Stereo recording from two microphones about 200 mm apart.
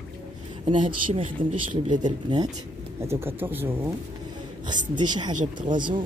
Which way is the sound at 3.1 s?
10° right (ahead or behind).